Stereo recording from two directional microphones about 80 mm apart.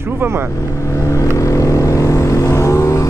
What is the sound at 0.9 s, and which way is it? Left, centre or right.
Vehicle, left.